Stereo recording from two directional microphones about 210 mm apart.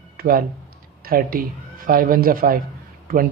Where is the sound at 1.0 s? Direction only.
45° right (ahead or behind).